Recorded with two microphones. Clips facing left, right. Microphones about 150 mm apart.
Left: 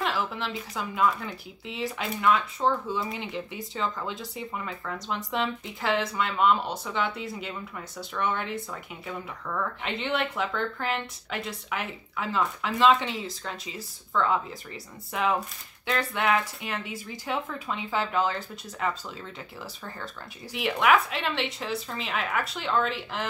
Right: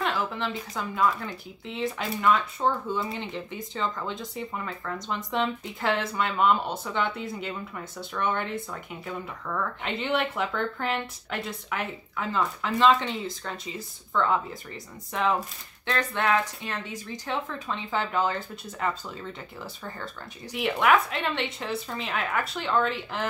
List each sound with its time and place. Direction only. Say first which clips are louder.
0.0 s a woman's voice: right 1 dB; 5° left (ahead or behind)
20.5 s speech: even; centre (ahead or behind)